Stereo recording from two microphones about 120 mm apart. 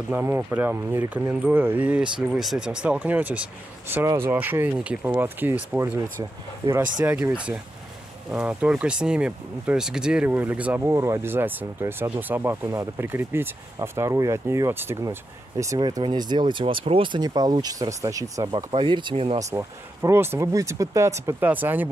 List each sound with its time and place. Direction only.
0.1 s speech: 15° right (ahead or behind)
6.6 s speech: 25° right (ahead or behind)
18.7 s speech: 45° right (ahead or behind)
19.5 s speech: 25° right (ahead or behind)